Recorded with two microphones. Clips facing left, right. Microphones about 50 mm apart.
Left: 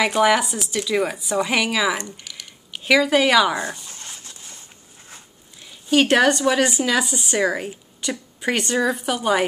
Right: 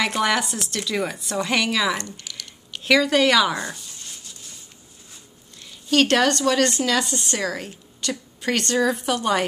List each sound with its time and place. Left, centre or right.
0.0 s speech: centre
3.5 s speech: centre
5.6 s speech: centre